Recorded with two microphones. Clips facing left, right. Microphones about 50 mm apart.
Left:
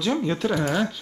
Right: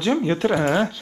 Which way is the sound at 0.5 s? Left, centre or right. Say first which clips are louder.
Right 4 dB; right.